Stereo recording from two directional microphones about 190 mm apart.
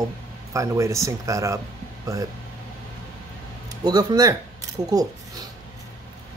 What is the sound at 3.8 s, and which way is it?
Speech, 20° right (ahead or behind).